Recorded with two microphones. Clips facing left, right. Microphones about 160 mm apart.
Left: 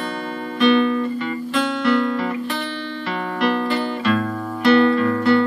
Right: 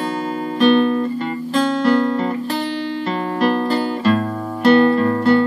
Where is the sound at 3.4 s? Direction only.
40° right (ahead or behind).